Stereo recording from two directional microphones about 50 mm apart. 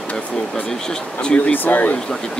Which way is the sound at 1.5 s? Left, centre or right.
Left.